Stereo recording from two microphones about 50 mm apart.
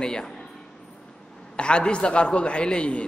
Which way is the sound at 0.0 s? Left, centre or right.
Centre.